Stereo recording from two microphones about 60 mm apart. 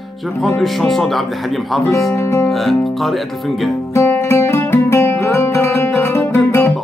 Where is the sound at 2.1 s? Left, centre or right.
Left.